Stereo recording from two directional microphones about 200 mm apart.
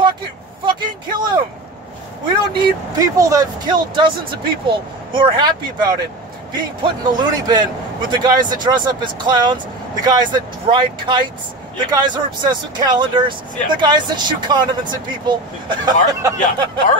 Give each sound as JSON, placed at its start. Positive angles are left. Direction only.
{"t": 0.7, "sound": "speech", "side_deg": -20}
{"t": 2.5, "sound": "speech", "side_deg": -20}